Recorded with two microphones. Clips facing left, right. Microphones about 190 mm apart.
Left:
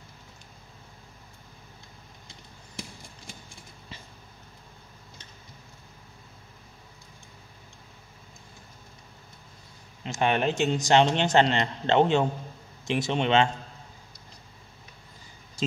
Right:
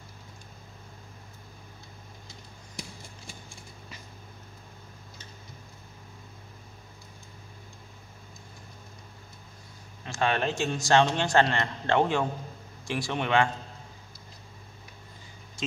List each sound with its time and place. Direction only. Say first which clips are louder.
10.0 s a man's voice: left 2 dB; 20° left (ahead or behind)